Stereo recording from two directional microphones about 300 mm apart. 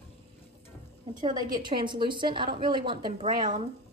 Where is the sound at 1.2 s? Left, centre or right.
Centre.